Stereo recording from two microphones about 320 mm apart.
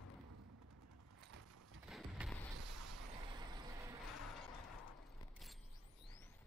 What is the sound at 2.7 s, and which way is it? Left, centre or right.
Vehicle, right.